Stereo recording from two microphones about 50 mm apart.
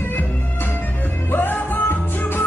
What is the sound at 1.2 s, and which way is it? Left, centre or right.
Music, left.